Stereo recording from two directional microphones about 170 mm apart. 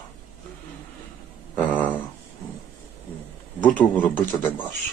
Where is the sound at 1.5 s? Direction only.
10° left (ahead or behind).